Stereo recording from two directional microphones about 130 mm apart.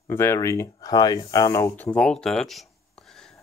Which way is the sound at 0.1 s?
20° left (ahead or behind).